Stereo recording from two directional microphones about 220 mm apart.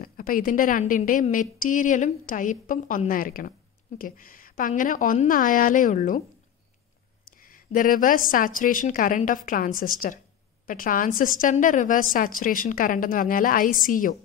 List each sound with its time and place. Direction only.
0.0 s a woman's voice: 40° left (ahead or behind)
7.2 s a woman's voice: 40° left (ahead or behind)